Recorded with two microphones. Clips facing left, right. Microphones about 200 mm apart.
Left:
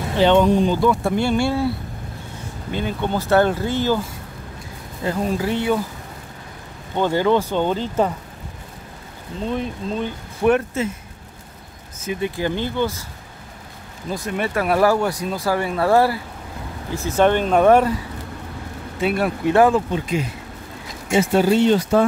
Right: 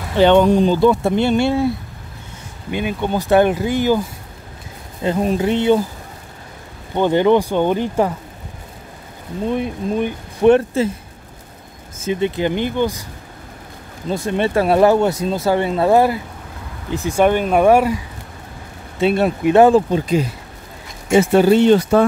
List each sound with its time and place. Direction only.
0.7 s speech: 25° right (ahead or behind)
2.7 s speech: 15° right (ahead or behind)
5.0 s speech: 20° right (ahead or behind)
7.0 s speech: 20° right (ahead or behind)
9.5 s speech: 15° right (ahead or behind)
10.5 s speech: 30° right (ahead or behind)
12.0 s speech: 25° right (ahead or behind)
14.0 s speech: 25° right (ahead or behind); by 18.0 s 10° right (ahead or behind)
18.9 s speech: 25° right (ahead or behind)
21.1 s speech: 65° right (ahead or behind)